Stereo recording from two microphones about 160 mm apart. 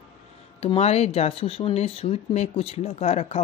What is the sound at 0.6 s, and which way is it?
Speech, 40° left (ahead or behind).